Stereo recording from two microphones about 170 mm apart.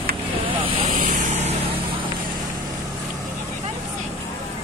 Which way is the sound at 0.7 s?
30° right (ahead or behind).